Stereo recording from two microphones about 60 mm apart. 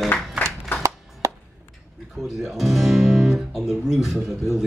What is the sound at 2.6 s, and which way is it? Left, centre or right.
Music, centre.